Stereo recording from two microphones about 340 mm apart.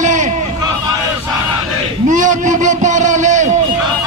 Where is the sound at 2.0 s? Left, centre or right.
Right.